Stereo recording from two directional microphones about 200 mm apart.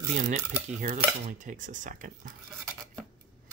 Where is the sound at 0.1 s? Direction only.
40° right (ahead or behind).